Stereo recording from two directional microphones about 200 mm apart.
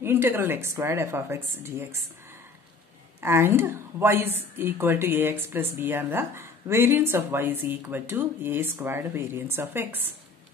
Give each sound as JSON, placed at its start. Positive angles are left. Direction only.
{"t": 0.0, "sound": "speech", "side_deg": -10}
{"t": 3.2, "sound": "speech", "side_deg": -10}